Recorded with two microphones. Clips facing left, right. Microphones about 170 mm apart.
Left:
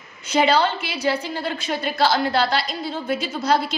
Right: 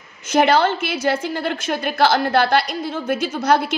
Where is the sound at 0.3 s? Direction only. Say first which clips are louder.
Right 3 dB; 50° right (ahead or behind).